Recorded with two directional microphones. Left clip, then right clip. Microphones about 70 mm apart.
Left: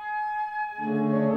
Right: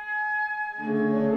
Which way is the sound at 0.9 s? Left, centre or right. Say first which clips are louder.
Right 1 dB; right.